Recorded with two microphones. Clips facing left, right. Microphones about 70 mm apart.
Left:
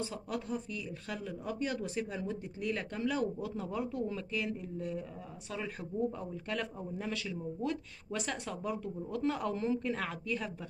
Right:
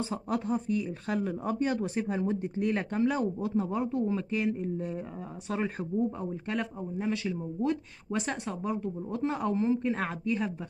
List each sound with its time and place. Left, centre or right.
0.0 s speech: right
5.5 s speech: right
6.5 s speech: right